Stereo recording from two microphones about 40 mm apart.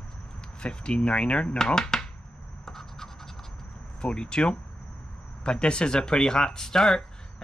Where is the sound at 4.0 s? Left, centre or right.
Left.